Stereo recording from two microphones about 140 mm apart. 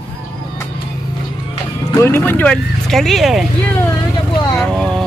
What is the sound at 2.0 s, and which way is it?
Speech, 20° left (ahead or behind).